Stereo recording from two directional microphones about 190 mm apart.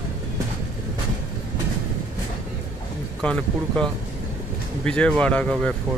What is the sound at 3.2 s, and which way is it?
Speech, 5° left (ahead or behind).